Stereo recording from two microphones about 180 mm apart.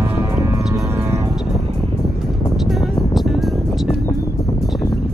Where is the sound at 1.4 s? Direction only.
Centre (ahead or behind).